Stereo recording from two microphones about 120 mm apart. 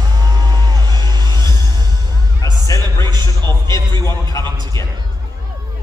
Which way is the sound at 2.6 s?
25° left (ahead or behind).